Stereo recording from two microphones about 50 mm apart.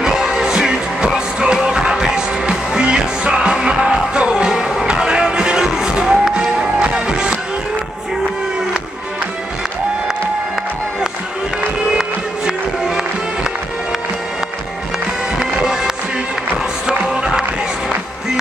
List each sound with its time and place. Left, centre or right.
0.0 s music: centre
12.0 s music: centre
15.3 s music: centre
17.1 s music: centre